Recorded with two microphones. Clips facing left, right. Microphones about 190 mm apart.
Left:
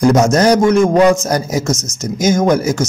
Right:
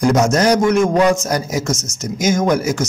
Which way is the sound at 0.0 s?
35° left (ahead or behind).